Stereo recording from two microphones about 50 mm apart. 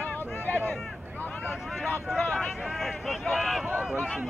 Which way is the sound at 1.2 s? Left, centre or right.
Left.